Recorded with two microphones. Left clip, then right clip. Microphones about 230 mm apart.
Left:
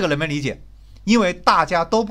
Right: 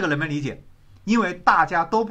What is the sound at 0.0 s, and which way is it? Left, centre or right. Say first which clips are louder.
Speech: left 3 dB; left.